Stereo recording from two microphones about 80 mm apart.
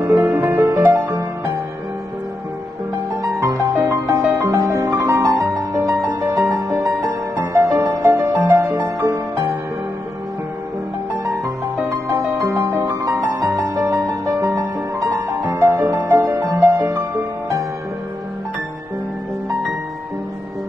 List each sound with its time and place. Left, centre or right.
0.0 s music: right
3.3 s music: right
7.6 s music: right
8.1 s music: right
12.1 s music: right
14.4 s music: right
15.8 s music: right
16.1 s music: right